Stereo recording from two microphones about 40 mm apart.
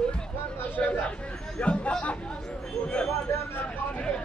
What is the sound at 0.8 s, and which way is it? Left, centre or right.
Speech, left.